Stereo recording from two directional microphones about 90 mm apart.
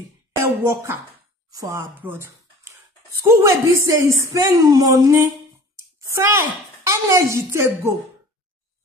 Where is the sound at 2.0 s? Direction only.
25° right (ahead or behind).